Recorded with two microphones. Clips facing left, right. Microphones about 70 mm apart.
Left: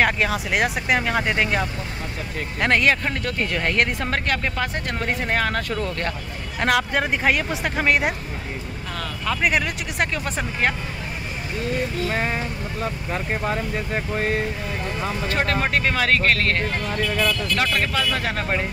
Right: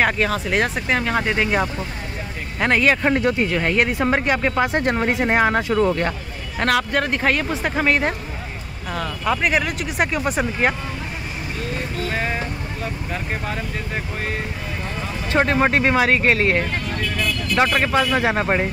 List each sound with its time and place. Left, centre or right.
0.0 s speech: centre
2.6 s speech: centre
3.0 s speech: right
3.3 s speech: centre
4.7 s speech: right
6.6 s speech: centre
8.9 s speech: centre
9.4 s speech: centre
15.2 s speech: right
17.7 s speech: right